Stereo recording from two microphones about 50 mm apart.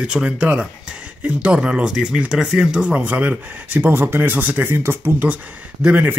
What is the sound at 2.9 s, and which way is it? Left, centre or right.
Speech, right.